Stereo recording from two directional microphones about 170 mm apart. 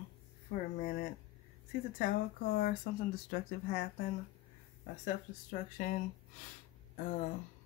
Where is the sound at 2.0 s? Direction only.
55° left (ahead or behind).